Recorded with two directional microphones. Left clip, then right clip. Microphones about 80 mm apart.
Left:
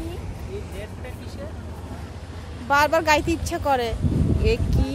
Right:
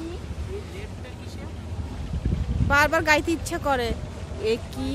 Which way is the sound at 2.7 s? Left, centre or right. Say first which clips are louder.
Left 1 dB; centre.